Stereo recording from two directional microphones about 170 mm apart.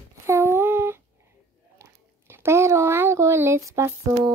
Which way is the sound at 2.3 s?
15° right (ahead or behind).